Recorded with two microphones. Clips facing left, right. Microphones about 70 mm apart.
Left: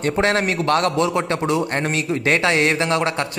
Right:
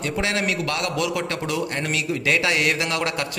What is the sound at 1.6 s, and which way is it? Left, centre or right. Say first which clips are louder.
A woman's voice: left 4 dB; left.